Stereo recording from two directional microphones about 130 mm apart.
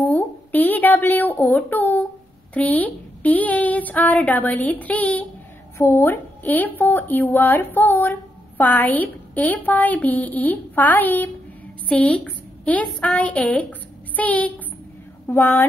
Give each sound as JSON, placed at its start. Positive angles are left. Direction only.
{"t": 0.0, "sound": "a woman's voice", "side_deg": 15}